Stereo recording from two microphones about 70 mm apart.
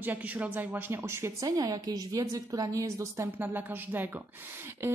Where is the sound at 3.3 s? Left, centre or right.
Right.